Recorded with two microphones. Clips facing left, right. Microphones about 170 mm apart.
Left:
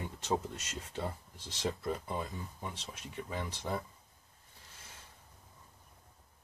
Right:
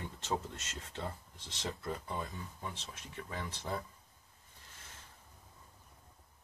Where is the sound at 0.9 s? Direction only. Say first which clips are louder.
Left 3 dB; 10° left (ahead or behind).